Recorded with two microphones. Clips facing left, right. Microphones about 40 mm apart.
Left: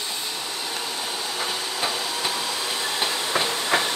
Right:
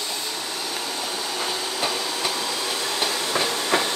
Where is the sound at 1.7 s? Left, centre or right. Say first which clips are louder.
Right 1 dB; centre.